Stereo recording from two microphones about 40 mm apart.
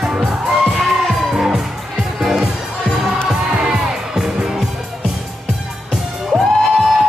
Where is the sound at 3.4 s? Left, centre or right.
Centre.